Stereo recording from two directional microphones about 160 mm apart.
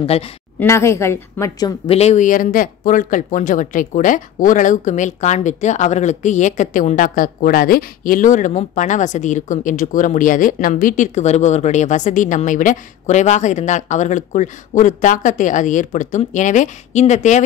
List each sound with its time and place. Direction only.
0.6 s a woman's voice: 15° left (ahead or behind)
1.9 s speech: 45° left (ahead or behind)